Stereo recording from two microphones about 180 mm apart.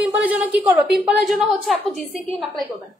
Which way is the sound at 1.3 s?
Centre (ahead or behind).